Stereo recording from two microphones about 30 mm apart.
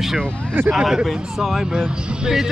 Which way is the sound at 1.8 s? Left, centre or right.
Centre.